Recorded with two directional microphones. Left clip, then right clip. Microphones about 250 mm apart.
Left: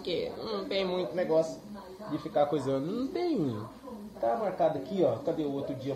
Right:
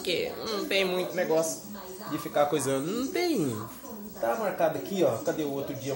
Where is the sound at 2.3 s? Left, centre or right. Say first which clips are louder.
Right 2 dB; centre.